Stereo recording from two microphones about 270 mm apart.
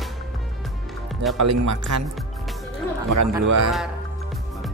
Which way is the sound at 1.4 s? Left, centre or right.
Right.